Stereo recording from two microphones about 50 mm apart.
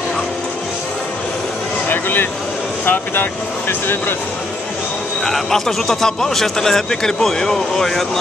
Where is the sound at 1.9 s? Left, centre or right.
Left.